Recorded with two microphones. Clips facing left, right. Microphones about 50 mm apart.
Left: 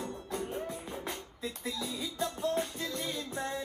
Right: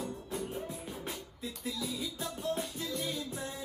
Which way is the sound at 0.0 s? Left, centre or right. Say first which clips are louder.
Left 1 dB; left.